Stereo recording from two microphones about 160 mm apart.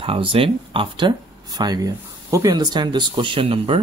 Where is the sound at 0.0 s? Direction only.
35° right (ahead or behind).